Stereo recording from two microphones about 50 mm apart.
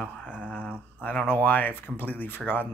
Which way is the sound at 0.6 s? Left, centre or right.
Right.